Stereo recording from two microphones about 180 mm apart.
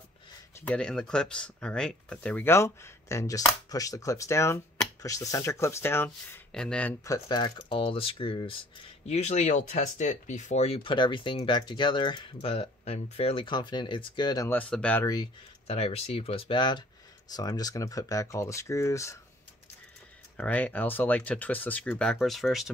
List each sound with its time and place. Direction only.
0.6 s speech: 5° left (ahead or behind)
7.1 s speech: 25° left (ahead or behind)
14.5 s speech: 5° left (ahead or behind)
15.6 s speech: 35° left (ahead or behind); by 19.1 s 15° left (ahead or behind)
20.3 s speech: 10° left (ahead or behind)